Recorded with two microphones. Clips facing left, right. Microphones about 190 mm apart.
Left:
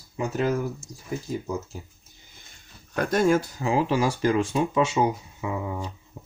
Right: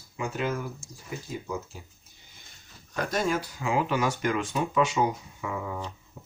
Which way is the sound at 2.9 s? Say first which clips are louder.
Left 6 dB; 50° left (ahead or behind).